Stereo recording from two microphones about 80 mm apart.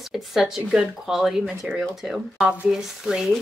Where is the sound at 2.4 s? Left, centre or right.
Centre.